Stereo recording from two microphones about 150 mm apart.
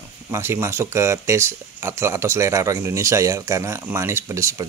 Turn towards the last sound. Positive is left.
turn(degrees=-20)  # may be behind; listen again after turning